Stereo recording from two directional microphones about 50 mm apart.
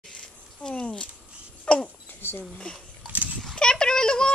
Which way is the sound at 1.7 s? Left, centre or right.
Left.